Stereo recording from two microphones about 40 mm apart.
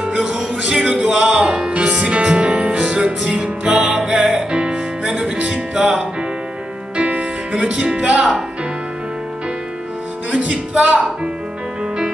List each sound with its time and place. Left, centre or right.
0.2 s music: centre
1.7 s music: right
3.6 s music: centre
4.5 s music: right
7.0 s music: right
7.8 s speech: right
10.3 s music: right